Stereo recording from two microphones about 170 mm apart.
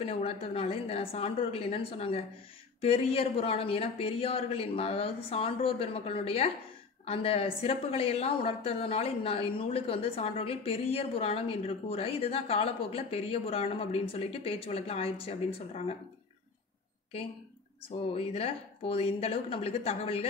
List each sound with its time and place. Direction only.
0.0 s a woman's voice: 35° left (ahead or behind)
17.8 s a woman's voice: 35° left (ahead or behind)